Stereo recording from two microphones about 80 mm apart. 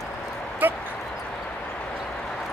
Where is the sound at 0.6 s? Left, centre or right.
Right.